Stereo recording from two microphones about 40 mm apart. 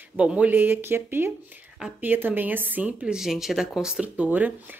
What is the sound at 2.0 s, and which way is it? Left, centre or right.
Speech, right.